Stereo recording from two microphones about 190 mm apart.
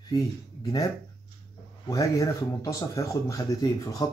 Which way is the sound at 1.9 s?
15° left (ahead or behind).